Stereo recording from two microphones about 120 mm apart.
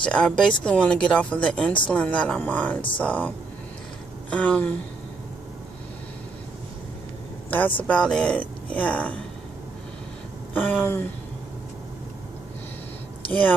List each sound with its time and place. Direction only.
0.0 s speech: 10° left (ahead or behind)
7.5 s speech: 15° left (ahead or behind)
10.5 s speech: 15° left (ahead or behind)